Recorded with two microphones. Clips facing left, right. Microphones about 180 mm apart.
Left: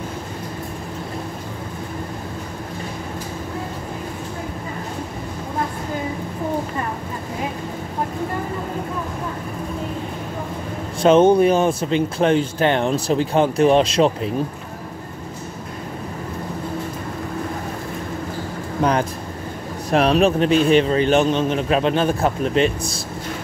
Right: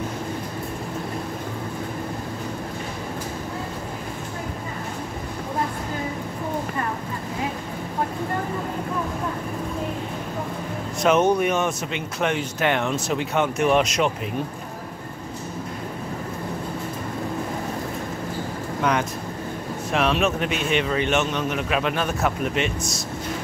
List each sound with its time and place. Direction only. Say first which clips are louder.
11.0 s speech: left 6 dB; 30° left (ahead or behind)
18.8 s vehicle: left 4 dB; 35° left (ahead or behind)
19.9 s speech: left 6 dB; 40° left (ahead or behind)